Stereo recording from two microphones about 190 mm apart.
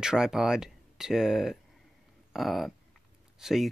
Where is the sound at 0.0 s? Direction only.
5° right (ahead or behind).